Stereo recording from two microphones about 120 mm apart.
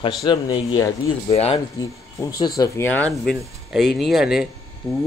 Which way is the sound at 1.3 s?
60° left (ahead or behind).